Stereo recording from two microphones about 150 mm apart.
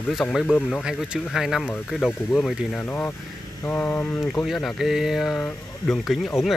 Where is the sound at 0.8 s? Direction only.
5° right (ahead or behind).